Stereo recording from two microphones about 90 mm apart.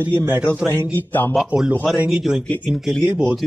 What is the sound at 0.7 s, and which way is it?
Speech, 20° left (ahead or behind).